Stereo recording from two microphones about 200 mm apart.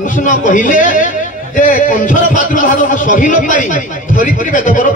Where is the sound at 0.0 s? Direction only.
40° left (ahead or behind).